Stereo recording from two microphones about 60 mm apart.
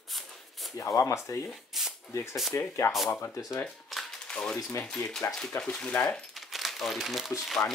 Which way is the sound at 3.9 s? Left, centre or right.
Centre.